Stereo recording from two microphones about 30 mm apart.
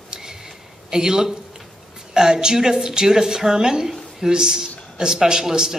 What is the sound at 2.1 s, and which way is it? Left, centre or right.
A man's voice, right.